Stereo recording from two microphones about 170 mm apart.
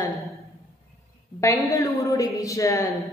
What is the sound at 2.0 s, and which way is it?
Speech, 20° left (ahead or behind).